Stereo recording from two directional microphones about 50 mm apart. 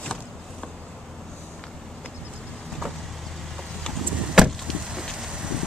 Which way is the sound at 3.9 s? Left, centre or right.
Centre.